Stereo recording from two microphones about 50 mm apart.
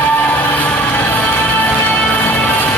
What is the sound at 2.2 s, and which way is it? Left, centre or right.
Music, left.